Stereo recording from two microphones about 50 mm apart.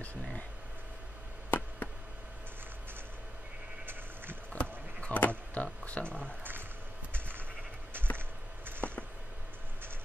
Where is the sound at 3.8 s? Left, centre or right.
Right.